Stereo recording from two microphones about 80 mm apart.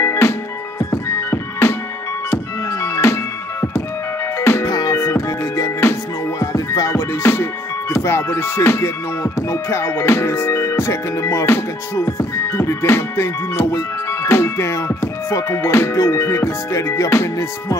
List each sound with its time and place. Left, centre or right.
0.0 s music: left
4.4 s music: left
4.6 s music: left